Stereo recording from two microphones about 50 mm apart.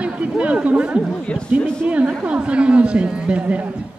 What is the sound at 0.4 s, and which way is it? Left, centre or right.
Speech, right.